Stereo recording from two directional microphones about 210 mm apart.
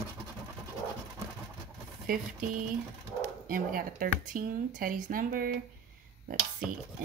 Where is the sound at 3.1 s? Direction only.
40° right (ahead or behind).